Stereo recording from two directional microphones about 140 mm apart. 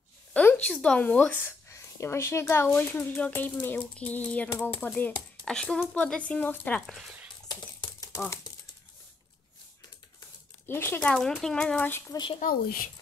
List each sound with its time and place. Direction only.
0.3 s speech: 10° left (ahead or behind)
10.7 s speech: 15° left (ahead or behind)
11.0 s speech: 5° left (ahead or behind)
12.1 s speech: 35° left (ahead or behind)
12.4 s speech: 85° left